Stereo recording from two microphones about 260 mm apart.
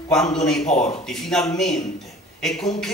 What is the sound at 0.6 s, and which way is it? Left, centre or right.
Speech, left.